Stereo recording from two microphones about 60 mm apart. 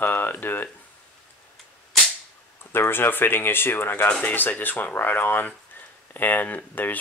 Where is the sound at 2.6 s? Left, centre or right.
Left.